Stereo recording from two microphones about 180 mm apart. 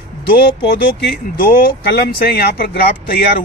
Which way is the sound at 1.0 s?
65° left (ahead or behind).